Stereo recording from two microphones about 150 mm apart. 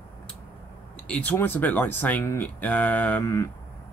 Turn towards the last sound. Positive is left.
turn(degrees=20)  # may be behind; listen again after turning